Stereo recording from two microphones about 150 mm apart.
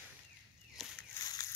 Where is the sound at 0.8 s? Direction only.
Centre (ahead or behind).